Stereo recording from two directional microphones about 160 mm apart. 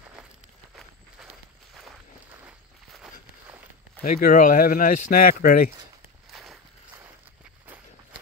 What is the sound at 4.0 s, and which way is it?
Speech, 65° left (ahead or behind).